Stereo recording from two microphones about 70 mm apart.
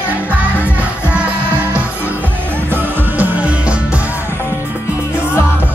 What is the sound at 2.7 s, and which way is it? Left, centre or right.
Music, right.